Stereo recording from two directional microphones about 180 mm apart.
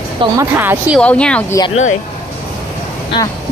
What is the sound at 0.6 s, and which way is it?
Speech, 10° right (ahead or behind).